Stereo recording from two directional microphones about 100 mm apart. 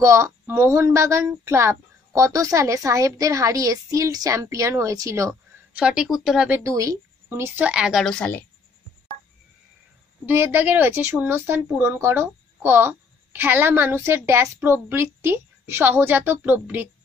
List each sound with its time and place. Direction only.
0.0 s speech: 30° right (ahead or behind)
5.8 s a woman's voice: 10° right (ahead or behind)
6.7 s speech: 35° right (ahead or behind)
7.2 s a woman's voice: 25° right (ahead or behind); by 8.0 s 10° right (ahead or behind)
8.0 s a woman's voice: 10° left (ahead or behind)
10.2 s a woman's voice: 20° right (ahead or behind)